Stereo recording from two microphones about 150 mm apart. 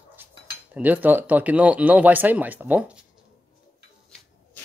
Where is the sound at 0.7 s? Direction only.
10° right (ahead or behind).